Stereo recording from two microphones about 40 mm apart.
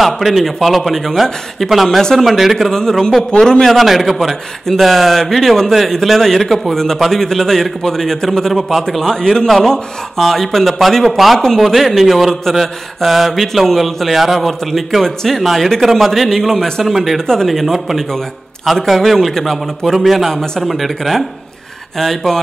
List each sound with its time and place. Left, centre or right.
0.0 s speech: centre
2.7 s a man's voice: centre
3.6 s a man's voice: centre
16.8 s a man's voice: centre
20.1 s a man's voice: centre